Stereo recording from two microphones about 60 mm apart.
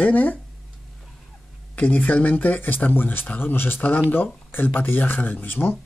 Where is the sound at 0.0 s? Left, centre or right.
Left.